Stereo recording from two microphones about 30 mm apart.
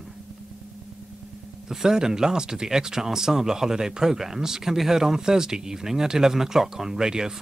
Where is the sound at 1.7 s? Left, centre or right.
Centre.